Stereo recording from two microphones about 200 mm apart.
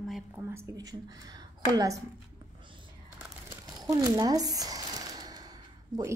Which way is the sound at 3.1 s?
15° right (ahead or behind).